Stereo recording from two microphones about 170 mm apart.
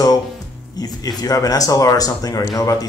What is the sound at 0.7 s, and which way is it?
Speech, 20° left (ahead or behind).